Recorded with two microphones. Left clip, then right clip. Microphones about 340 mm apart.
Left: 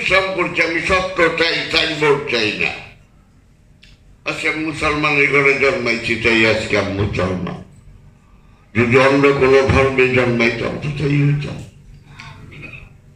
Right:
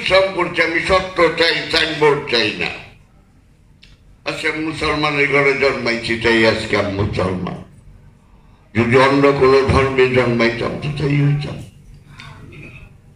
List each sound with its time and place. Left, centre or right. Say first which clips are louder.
0.0 s a man's voice: right 1 dB; right
4.2 s a man's voice: left 1 dB; right
8.7 s a man's voice: even; right